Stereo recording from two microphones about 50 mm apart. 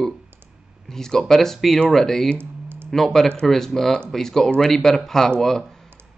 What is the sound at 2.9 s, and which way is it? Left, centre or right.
Speech, centre.